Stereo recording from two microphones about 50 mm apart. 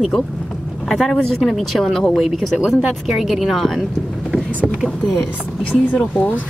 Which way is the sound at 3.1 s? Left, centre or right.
Centre.